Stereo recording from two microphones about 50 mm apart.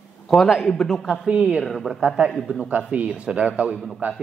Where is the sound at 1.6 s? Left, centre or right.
Centre.